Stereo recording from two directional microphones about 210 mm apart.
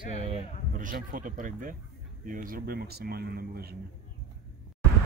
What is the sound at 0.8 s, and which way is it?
Speech, 40° right (ahead or behind).